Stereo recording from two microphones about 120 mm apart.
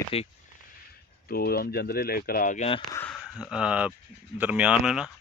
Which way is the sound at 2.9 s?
10° left (ahead or behind).